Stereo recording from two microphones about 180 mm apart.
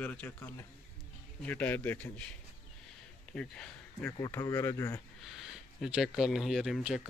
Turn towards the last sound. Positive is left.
turn(degrees=0)  # may be behind; listen again after turning